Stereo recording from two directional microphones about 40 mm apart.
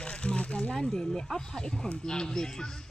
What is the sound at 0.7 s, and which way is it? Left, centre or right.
Speech, centre.